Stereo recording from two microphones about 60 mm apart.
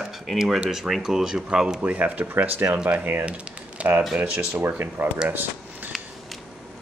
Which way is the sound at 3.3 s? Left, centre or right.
Right.